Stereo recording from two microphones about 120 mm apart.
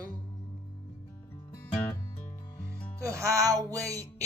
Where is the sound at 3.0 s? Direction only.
25° right (ahead or behind).